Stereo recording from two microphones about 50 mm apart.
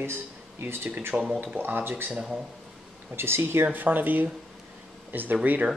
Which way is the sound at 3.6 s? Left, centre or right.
Right.